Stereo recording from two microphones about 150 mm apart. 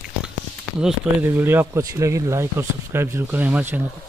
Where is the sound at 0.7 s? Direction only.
10° right (ahead or behind).